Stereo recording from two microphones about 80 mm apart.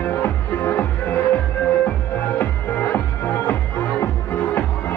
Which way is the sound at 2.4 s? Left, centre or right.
Left.